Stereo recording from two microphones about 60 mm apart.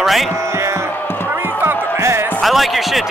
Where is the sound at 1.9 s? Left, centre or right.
Right.